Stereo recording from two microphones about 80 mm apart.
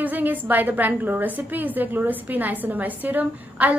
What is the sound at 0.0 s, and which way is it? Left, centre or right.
A woman's voice, right.